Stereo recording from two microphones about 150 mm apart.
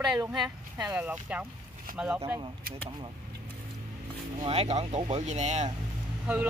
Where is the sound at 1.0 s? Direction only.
10° right (ahead or behind).